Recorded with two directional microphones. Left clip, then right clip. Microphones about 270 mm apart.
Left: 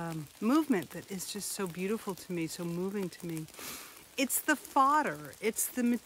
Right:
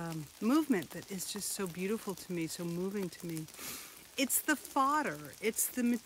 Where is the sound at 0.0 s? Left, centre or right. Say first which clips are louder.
Left 2 dB; centre.